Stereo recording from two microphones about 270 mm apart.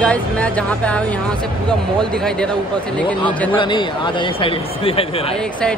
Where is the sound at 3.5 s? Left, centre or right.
Centre.